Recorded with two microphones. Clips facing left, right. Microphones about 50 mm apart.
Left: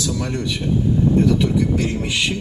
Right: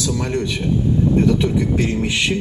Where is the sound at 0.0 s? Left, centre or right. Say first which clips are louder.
Right 2 dB; right.